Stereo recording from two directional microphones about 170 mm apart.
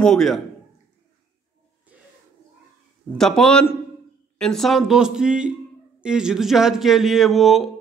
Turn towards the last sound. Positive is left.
turn(degrees=0)  # may be behind; listen again after turning